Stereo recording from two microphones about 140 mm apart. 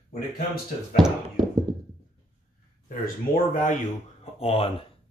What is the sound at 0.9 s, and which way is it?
Speech, centre (ahead or behind).